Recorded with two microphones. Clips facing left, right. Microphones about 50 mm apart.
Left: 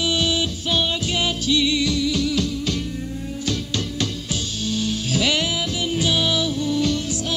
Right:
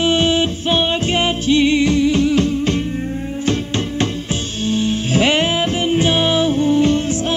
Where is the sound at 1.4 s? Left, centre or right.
Right.